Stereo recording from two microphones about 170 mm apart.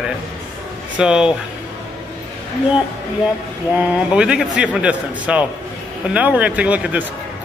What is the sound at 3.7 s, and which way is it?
Speech, 5° right (ahead or behind).